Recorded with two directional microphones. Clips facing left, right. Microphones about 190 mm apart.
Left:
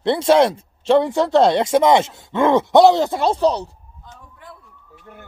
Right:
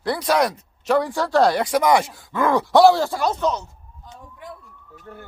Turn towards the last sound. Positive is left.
turn(degrees=15)  # may be behind; listen again after turning